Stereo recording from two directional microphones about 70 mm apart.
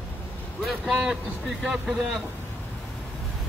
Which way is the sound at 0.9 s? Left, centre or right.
Centre.